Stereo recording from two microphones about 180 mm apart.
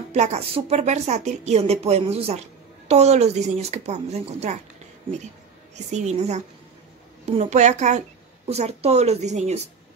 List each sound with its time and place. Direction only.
0.1 s a woman's voice: 40° right (ahead or behind)
5.9 s a woman's voice: 40° right (ahead or behind)